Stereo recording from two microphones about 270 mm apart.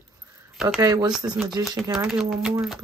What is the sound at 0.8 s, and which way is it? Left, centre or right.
Speech, centre.